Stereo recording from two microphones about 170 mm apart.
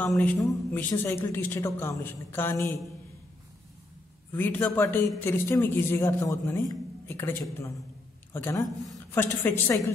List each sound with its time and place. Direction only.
0.0 s a man's voice: 5° left (ahead or behind)
4.3 s a man's voice: 10° left (ahead or behind)
6.7 s a sound: 15° left (ahead or behind)
8.3 s a man's voice: 15° left (ahead or behind)